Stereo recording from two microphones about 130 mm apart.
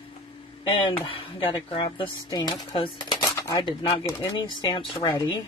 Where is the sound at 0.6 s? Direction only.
40° left (ahead or behind).